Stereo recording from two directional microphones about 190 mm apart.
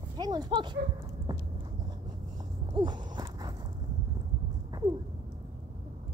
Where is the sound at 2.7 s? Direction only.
25° right (ahead or behind).